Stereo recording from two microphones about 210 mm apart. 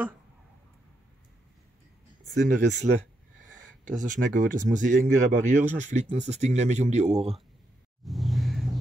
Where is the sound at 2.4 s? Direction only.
35° right (ahead or behind).